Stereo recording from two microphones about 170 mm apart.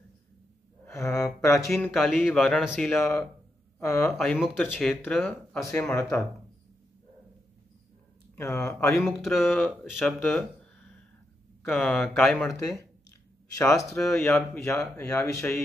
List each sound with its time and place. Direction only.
0.8 s a sound: 15° left (ahead or behind)
1.7 s speech: 5° left (ahead or behind)
3.0 s speech: 15° left (ahead or behind)
4.2 s speech: 5° left (ahead or behind)
8.4 s speech: 20° left (ahead or behind)
9.0 s speech: centre (ahead or behind)
13.6 s speech: 20° left (ahead or behind)